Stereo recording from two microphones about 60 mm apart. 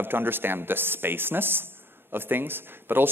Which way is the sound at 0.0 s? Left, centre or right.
Right.